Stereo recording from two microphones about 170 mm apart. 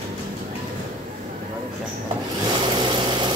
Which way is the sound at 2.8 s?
25° right (ahead or behind).